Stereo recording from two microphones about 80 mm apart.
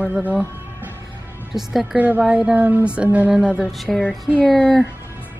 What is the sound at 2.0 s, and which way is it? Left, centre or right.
Speech, right.